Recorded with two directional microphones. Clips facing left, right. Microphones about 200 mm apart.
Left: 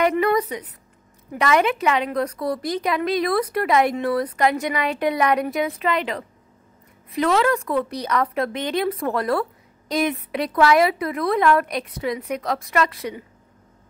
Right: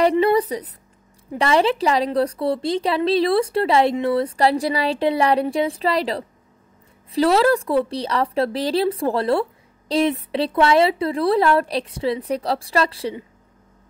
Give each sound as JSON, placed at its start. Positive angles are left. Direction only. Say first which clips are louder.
{"t": 0.2, "sound": "a woman's voice", "louder": "right 3 dB", "side_deg": -30}